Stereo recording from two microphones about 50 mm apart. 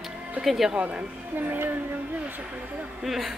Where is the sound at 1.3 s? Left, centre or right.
Right.